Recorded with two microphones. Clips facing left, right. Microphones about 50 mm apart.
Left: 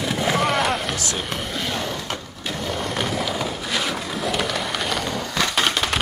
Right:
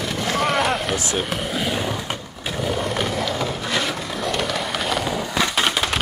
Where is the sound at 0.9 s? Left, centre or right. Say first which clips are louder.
Right 3 dB; right.